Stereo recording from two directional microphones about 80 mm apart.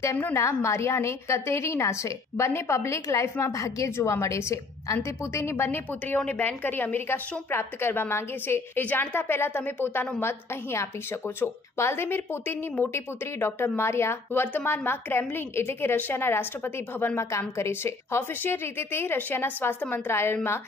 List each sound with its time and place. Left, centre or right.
0.0 s a woman's voice: left
5.9 s a woman's voice: centre